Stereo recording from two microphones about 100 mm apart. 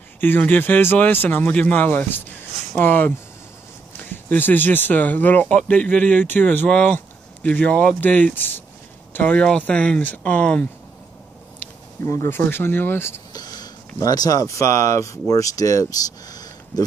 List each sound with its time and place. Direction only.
0.2 s speech: 20° left (ahead or behind)
12.0 s speech: 25° left (ahead or behind)
13.3 s speech: 40° left (ahead or behind)